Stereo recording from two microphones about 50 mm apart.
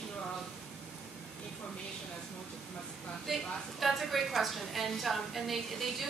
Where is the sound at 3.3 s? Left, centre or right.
Centre.